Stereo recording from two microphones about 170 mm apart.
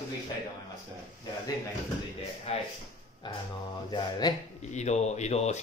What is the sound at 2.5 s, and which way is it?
Speech, 40° left (ahead or behind).